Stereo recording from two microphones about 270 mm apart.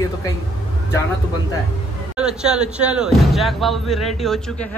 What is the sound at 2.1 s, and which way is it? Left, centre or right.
Speech, centre.